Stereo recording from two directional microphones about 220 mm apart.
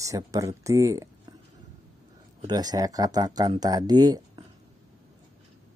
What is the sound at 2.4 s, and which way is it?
Speech, 20° right (ahead or behind).